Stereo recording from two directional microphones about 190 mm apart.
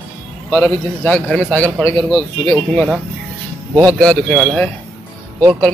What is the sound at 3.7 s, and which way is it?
Speech, 20° right (ahead or behind).